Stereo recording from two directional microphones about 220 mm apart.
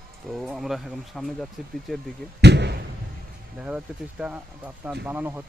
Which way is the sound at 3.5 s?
5° right (ahead or behind).